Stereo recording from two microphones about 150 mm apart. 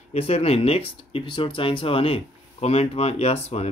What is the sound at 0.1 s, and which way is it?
Speech, 40° left (ahead or behind).